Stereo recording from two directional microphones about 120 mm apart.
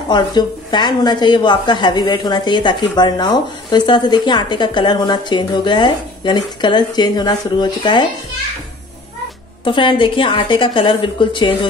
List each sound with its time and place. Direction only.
0.1 s a woman's voice: 35° left (ahead or behind)
9.7 s a woman's voice: 45° left (ahead or behind)